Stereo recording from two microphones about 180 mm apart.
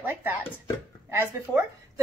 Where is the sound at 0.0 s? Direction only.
10° right (ahead or behind).